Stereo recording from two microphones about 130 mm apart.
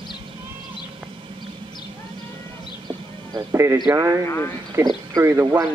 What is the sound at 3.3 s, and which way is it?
Speech, 20° right (ahead or behind).